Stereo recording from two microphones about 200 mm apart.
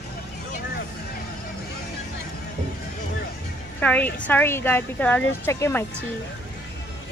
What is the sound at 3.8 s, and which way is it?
Speech, 5° left (ahead or behind).